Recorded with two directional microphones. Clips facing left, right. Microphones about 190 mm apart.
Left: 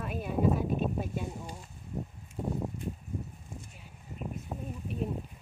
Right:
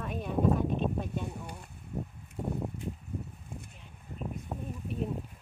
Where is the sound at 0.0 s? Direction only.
5° left (ahead or behind).